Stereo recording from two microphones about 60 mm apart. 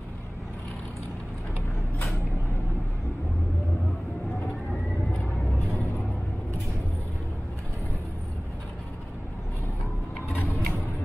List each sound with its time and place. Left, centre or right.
10.3 s vehicle: left